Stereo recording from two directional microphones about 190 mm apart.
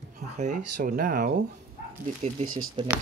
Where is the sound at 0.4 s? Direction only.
45° right (ahead or behind).